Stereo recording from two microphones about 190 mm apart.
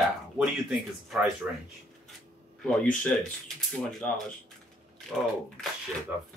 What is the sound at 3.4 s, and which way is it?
Speech, 5° left (ahead or behind).